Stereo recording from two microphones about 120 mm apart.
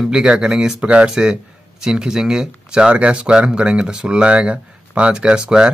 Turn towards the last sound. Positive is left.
turn(degrees=-5)  # may be behind; listen again after turning